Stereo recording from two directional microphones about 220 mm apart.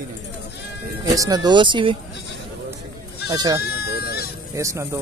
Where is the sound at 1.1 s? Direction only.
15° right (ahead or behind).